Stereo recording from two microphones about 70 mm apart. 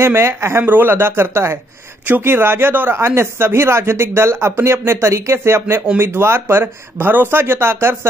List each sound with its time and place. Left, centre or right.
0.0 s speech: right